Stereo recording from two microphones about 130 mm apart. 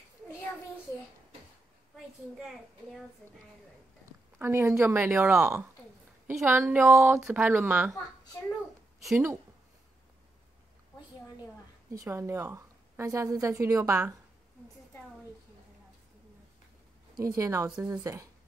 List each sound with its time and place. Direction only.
4.4 s a woman's voice: 20° right (ahead or behind)
9.1 s a woman's voice: 20° right (ahead or behind)
11.9 s a woman's voice: 25° right (ahead or behind)
17.4 s a woman's voice: 20° right (ahead or behind)